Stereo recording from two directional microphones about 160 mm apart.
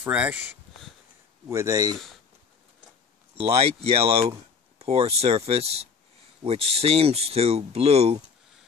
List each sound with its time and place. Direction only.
0.0 s speech: 10° right (ahead or behind)
1.5 s speech: 20° right (ahead or behind)
3.3 s speech: 35° right (ahead or behind)